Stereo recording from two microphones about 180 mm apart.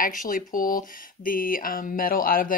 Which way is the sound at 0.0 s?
50° left (ahead or behind).